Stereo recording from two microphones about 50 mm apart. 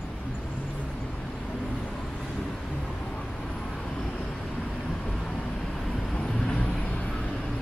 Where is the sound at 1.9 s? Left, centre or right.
Centre.